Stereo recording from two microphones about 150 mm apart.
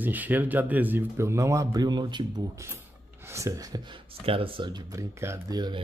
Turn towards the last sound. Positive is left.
turn(degrees=-25)  # may be behind; listen again after turning